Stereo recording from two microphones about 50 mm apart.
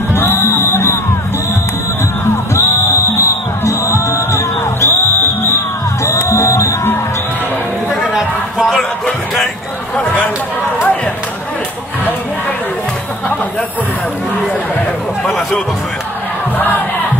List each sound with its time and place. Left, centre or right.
0.1 s music: left
2.2 s music: left
6.0 s music: left
8.1 s a sound: centre
8.7 s a sound: centre
15.2 s music: centre